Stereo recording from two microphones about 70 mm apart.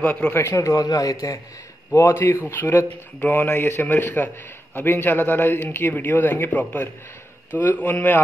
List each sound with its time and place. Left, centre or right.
0.0 s a man's voice: left
0.3 s speech: left
0.6 s a man's voice: left
2.0 s a man's voice: left